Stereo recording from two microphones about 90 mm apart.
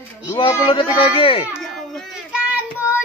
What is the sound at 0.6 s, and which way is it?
Speech, 75° left (ahead or behind).